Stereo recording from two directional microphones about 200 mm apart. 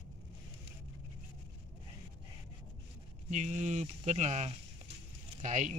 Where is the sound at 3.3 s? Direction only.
35° right (ahead or behind).